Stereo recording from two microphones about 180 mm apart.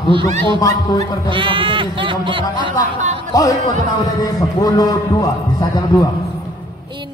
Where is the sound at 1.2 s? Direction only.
30° right (ahead or behind).